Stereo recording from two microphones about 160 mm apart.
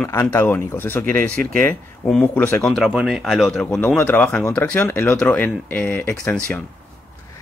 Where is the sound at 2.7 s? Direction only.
Centre (ahead or behind).